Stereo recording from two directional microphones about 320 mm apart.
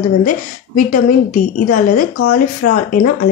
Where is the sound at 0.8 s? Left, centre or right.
Left.